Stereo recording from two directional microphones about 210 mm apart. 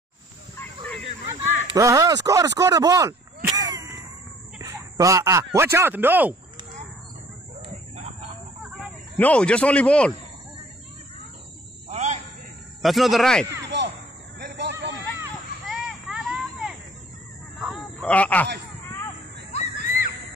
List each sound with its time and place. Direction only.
1.8 s speech: 15° right (ahead or behind)
3.5 s a sound: 15° right (ahead or behind)
4.9 s speech: 15° right (ahead or behind)
9.2 s speech: 5° left (ahead or behind)
11.9 s a sound: 35° right (ahead or behind)
12.8 s speech: centre (ahead or behind)
13.7 s basketball bounce: 55° right (ahead or behind)
14.4 s hubbub: 55° right (ahead or behind)
15.6 s hubbub: centre (ahead or behind)
17.6 s a sound: centre (ahead or behind)
19.5 s screaming: 35° left (ahead or behind)